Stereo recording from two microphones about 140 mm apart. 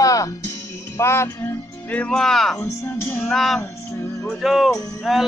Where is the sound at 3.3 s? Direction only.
Centre (ahead or behind).